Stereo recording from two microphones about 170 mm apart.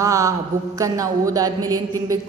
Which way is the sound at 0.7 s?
20° right (ahead or behind).